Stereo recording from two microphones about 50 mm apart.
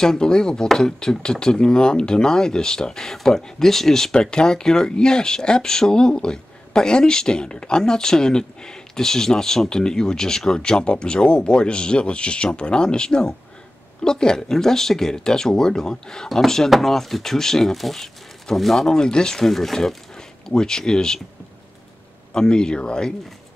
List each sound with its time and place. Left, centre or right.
0.0 s speech: centre
22.3 s speech: centre